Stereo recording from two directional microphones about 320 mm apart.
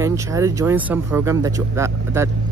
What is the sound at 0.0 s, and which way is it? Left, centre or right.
Speech, centre.